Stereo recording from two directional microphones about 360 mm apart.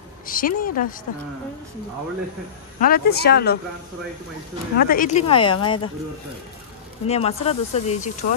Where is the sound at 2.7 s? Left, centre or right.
Left.